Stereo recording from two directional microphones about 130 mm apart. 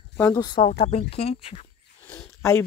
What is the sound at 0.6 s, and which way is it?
Speech, 50° left (ahead or behind).